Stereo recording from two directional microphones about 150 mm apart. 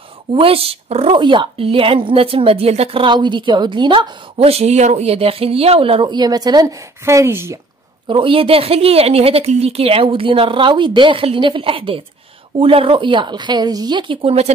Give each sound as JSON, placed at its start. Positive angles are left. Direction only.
{"t": 0.3, "sound": "speech", "side_deg": -40}
{"t": 8.1, "sound": "speech", "side_deg": -35}